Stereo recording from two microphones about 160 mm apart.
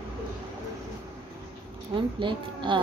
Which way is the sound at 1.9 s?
30° right (ahead or behind).